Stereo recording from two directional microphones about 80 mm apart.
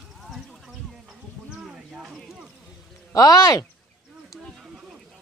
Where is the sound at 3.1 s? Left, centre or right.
Left.